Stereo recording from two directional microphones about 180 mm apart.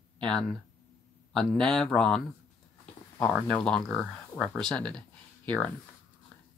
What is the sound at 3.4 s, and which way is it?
Speech, 5° left (ahead or behind).